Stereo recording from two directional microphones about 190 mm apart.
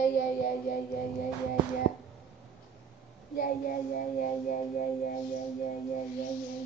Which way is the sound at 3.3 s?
50° left (ahead or behind).